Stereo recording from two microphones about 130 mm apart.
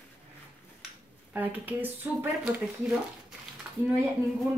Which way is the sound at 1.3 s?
15° right (ahead or behind).